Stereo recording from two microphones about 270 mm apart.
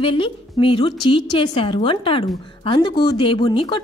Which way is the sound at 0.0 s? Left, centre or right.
Centre.